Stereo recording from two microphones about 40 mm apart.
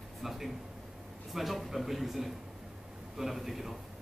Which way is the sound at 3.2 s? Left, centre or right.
Centre.